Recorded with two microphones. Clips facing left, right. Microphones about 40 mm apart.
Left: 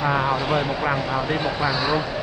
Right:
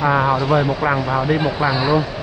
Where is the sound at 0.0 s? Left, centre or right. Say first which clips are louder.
Right 5 dB; centre.